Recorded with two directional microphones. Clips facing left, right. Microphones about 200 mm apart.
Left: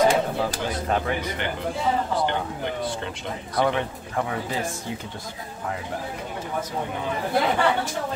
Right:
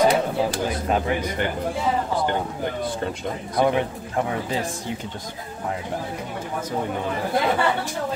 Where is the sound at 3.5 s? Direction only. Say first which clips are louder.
Right 3 dB; 15° right (ahead or behind).